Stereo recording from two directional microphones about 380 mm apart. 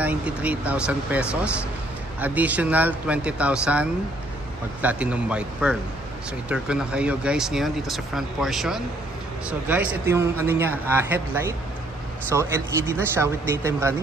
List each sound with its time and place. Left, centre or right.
0.0 s speech: centre